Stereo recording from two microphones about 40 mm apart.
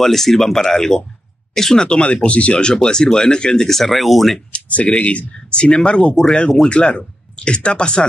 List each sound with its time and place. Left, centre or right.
0.0 s speech: centre
1.9 s speech: left
2.6 s speech: centre
3.6 s speech: centre
4.5 s speech: left